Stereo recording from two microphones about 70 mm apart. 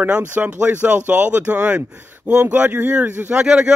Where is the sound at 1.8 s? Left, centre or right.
Right; by 3.7 s centre.